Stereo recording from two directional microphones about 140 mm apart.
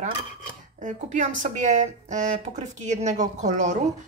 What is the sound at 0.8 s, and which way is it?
Speech, 60° right (ahead or behind).